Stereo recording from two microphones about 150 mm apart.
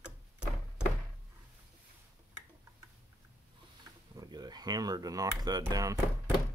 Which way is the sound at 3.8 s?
25° right (ahead or behind).